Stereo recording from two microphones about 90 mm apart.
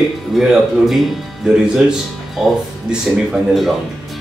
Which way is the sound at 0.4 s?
5° right (ahead or behind).